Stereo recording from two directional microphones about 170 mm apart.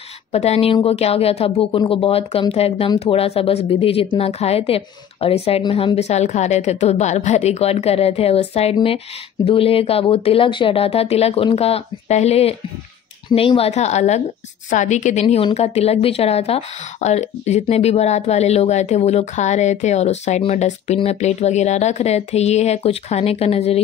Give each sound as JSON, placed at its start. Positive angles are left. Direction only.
{"t": 0.3, "sound": "a woman's voice", "side_deg": 40}